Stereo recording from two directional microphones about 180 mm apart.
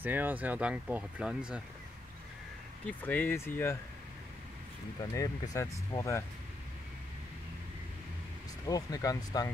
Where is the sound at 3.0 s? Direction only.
10° left (ahead or behind).